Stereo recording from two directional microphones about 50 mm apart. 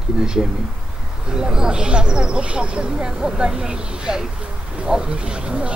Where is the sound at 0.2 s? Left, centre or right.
Centre.